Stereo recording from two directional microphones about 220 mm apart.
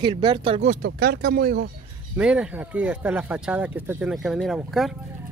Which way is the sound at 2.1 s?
5° right (ahead or behind).